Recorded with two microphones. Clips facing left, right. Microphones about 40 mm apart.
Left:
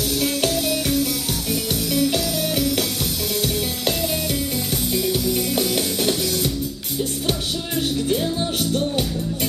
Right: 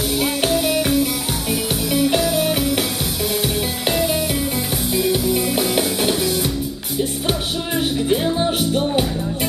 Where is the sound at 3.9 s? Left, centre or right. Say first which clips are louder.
Right 5 dB; centre.